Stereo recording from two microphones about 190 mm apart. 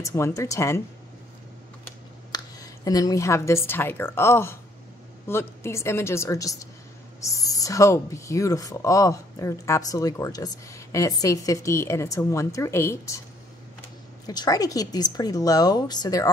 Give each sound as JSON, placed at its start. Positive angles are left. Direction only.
{"t": 0.0, "sound": "speech", "side_deg": 15}
{"t": 2.3, "sound": "speech", "side_deg": 20}